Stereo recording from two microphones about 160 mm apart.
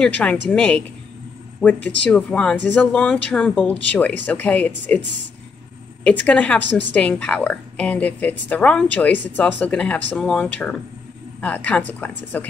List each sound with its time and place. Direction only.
0.0 s a woman's voice: 10° left (ahead or behind)
6.0 s a woman's voice: 10° left (ahead or behind)